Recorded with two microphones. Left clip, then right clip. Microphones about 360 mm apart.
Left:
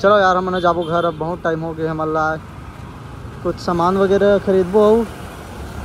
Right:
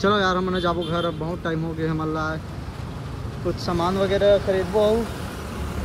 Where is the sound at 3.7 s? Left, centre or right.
Left.